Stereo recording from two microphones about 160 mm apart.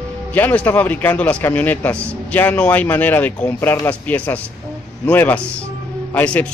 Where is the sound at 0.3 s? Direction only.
10° left (ahead or behind).